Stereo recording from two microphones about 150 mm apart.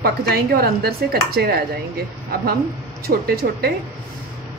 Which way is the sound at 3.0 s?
90° right.